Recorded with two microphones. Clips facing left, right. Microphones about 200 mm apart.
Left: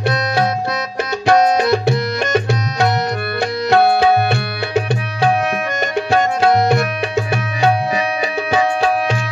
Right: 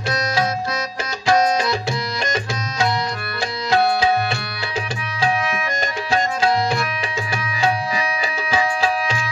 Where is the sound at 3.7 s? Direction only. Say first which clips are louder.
Left 5 dB; 60° left (ahead or behind).